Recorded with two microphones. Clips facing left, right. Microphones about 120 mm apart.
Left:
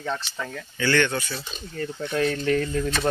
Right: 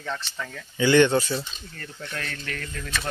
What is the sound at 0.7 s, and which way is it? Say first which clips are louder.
Speech: right 5 dB; 20° right (ahead or behind).